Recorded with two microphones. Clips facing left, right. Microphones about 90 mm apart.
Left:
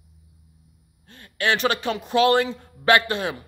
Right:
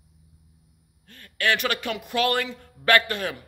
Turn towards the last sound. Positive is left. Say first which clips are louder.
# left 2 dB
turn(degrees=25)  # may be behind; listen again after turning